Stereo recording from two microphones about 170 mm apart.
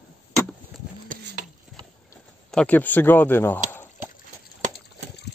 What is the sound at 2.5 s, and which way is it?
Speech, 5° left (ahead or behind).